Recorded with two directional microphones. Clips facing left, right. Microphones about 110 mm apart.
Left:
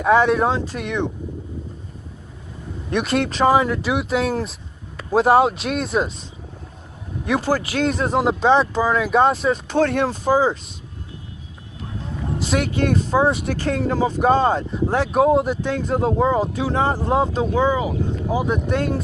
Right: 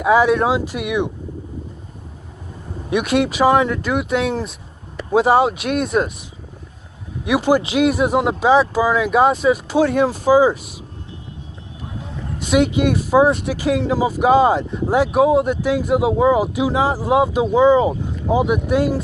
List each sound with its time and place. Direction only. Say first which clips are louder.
0.0 s speech: right 1 dB; 5° right (ahead or behind)
2.9 s speech: right 3 dB; 5° right (ahead or behind)
7.2 s speech: right 4 dB; 10° right (ahead or behind)
12.5 s speech: right 5 dB; 15° right (ahead or behind)
13.3 s speech: right 3 dB; 5° left (ahead or behind); by 17.7 s 15° right (ahead or behind)
17.7 s speech: right 5 dB; 30° right (ahead or behind)
18.4 s speech: right 5 dB; 10° right (ahead or behind)